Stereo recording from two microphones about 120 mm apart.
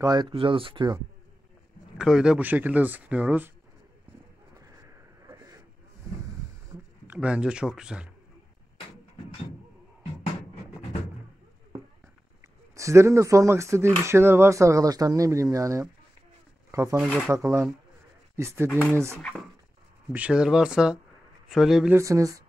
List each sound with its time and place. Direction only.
0.0 s speech: 30° right (ahead or behind)
0.3 s speech: 50° right (ahead or behind)
2.0 s speech: 5° right (ahead or behind)
5.2 s a sound: 25° right (ahead or behind)
7.1 s speech: 10° right (ahead or behind)
12.7 s speech: 25° right (ahead or behind)
20.1 s speech: 10° right (ahead or behind)
21.9 s speech: 25° right (ahead or behind)